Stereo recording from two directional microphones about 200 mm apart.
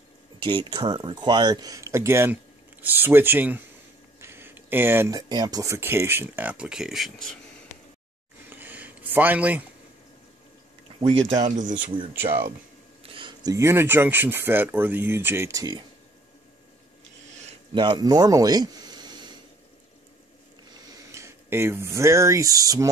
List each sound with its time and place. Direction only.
0.4 s speech: 25° right (ahead or behind); by 7.3 s centre (ahead or behind)
8.5 s a sound: 10° right (ahead or behind)
11.0 s speech: 30° right (ahead or behind)
13.0 s speech: 25° right (ahead or behind)
17.7 s speech: 20° right (ahead or behind)
21.1 s speech: 15° right (ahead or behind)